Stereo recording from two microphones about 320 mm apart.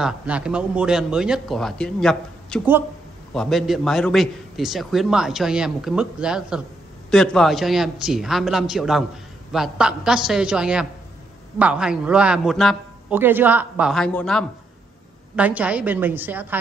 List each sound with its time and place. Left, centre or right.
0.0 s a man's voice: centre